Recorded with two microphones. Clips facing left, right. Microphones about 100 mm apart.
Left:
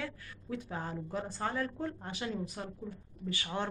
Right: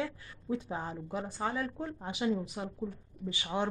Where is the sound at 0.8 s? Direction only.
10° right (ahead or behind).